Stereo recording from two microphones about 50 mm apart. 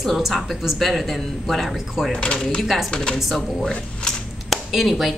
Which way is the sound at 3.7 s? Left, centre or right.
Centre.